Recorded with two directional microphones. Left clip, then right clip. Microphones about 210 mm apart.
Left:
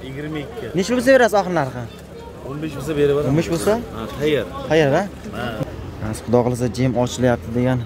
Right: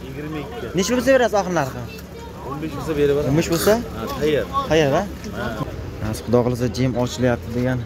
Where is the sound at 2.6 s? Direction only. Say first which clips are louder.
Left 1 dB; 20° left (ahead or behind).